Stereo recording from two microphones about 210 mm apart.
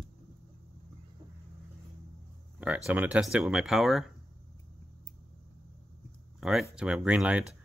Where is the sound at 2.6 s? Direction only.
5° right (ahead or behind).